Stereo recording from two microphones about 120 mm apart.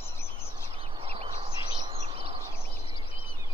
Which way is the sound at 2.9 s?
50° left (ahead or behind).